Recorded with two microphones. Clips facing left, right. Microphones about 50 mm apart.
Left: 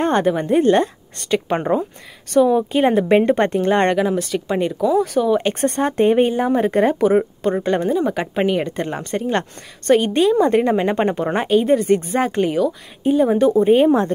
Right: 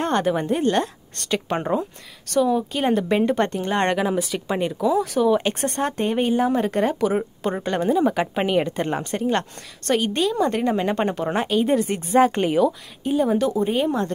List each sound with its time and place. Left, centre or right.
0.0 s a woman's voice: centre
13.0 s a woman's voice: centre